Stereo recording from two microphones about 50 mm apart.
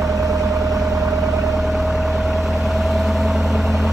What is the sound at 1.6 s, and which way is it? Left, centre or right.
Vehicle, centre.